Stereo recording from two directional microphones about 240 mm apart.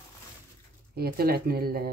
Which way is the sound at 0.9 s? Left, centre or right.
Right.